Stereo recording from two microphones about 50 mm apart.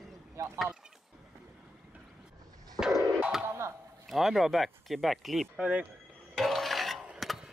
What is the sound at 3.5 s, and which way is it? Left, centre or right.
Chop, right.